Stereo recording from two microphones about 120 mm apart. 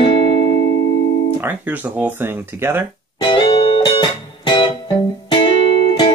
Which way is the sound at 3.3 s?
50° left (ahead or behind).